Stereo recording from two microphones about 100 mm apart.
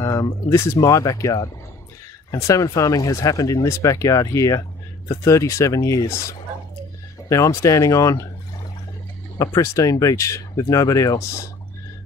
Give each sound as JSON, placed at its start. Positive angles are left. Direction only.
{"t": 0.0, "sound": "speech", "side_deg": 35}
{"t": 9.4, "sound": "speech", "side_deg": 35}